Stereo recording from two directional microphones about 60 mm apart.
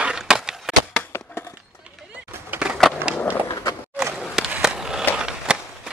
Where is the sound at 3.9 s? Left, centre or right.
Centre.